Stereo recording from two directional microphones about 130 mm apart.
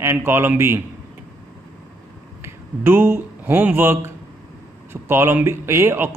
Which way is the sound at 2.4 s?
15° right (ahead or behind).